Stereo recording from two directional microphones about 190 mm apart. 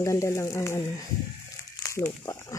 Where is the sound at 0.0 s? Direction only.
15° left (ahead or behind).